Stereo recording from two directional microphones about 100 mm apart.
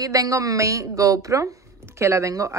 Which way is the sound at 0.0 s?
35° right (ahead or behind).